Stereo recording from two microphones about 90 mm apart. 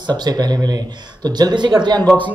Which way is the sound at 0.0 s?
50° right (ahead or behind).